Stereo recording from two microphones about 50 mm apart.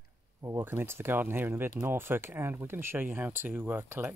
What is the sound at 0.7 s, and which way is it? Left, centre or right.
Speech, right.